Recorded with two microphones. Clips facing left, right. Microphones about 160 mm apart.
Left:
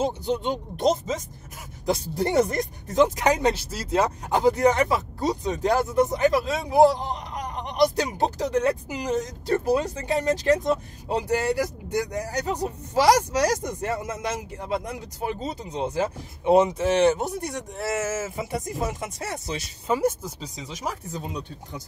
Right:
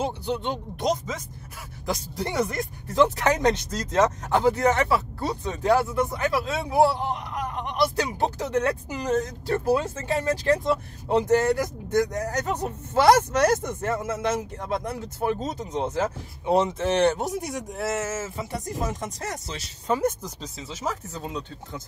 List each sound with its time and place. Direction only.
0.4 s speech: 20° left (ahead or behind)
2.1 s speech: 50° left (ahead or behind)
3.0 s a man's voice: 15° left (ahead or behind)
15.4 s speech: 10° left (ahead or behind)
16.7 s speech: 5° left (ahead or behind)